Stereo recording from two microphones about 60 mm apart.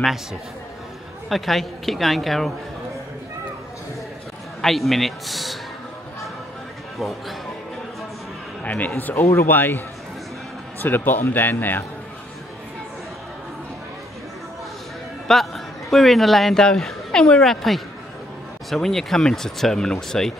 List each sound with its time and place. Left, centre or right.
1.3 s speech: centre
4.6 s speech: centre
7.0 s speech: centre
8.6 s a man's voice: left
15.2 s a man's voice: centre